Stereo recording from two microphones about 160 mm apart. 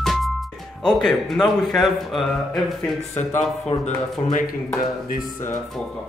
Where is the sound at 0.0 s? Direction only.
Centre (ahead or behind).